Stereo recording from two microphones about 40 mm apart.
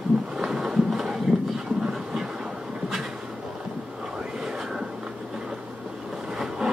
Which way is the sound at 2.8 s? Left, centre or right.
Centre.